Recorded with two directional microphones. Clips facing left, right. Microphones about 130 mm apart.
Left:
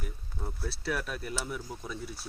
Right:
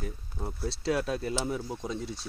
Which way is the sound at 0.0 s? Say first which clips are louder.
Right 4 dB; 20° right (ahead or behind).